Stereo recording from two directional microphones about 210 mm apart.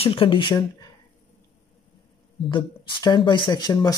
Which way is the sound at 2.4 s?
20° left (ahead or behind).